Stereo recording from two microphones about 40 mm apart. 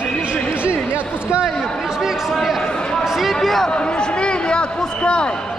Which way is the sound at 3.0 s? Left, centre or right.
Centre.